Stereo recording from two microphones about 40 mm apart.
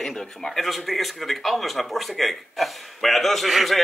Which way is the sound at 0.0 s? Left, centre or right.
Centre.